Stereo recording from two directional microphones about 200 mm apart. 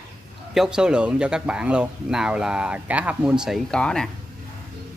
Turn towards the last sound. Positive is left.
turn(degrees=5)  # may be behind; listen again after turning